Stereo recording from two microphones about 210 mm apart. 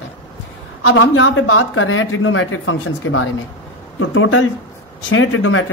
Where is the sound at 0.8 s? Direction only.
70° left (ahead or behind).